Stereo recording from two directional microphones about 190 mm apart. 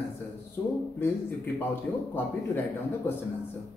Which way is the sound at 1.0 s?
10° left (ahead or behind).